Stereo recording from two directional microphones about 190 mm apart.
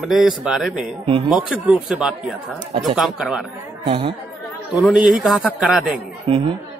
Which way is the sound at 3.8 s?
25° right (ahead or behind).